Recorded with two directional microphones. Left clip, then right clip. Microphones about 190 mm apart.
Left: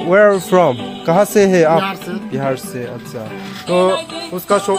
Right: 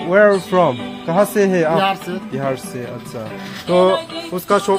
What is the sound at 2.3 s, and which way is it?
Speech, 20° left (ahead or behind).